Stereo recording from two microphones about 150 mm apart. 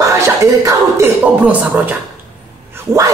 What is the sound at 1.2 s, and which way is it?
Speech, 10° right (ahead or behind).